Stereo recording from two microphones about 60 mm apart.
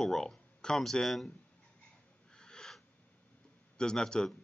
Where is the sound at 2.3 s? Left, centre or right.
Centre.